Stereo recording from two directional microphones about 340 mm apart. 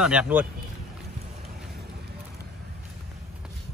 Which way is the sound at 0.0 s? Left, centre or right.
Centre.